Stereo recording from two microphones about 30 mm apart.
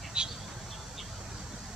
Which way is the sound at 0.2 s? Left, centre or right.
Right.